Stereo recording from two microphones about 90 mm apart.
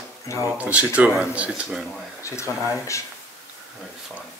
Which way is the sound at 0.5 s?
15° right (ahead or behind).